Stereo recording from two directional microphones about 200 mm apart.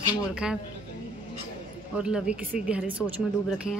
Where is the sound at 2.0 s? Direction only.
5° right (ahead or behind).